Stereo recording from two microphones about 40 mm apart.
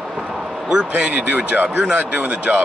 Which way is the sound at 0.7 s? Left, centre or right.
Centre.